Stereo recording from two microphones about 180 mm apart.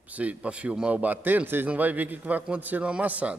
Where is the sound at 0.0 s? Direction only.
10° right (ahead or behind).